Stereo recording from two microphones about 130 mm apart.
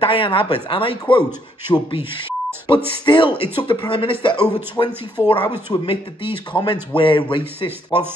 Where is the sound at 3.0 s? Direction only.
40° left (ahead or behind).